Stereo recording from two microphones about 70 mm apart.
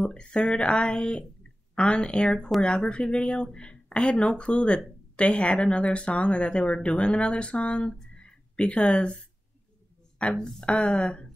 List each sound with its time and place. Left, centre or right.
0.0 s speech: centre